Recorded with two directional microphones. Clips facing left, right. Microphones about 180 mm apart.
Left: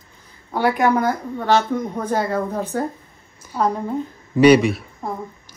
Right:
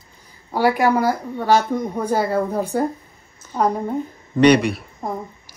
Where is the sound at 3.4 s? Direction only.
10° left (ahead or behind).